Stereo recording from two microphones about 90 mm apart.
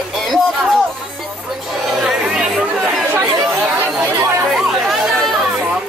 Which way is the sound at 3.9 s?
20° right (ahead or behind).